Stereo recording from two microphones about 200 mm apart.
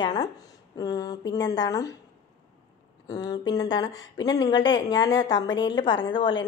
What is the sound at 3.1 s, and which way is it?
A woman's voice, 20° left (ahead or behind).